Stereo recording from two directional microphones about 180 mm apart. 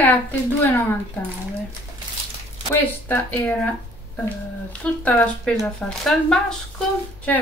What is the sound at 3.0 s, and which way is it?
Speech, 10° left (ahead or behind).